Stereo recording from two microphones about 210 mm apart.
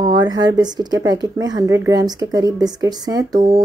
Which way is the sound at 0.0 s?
20° right (ahead or behind).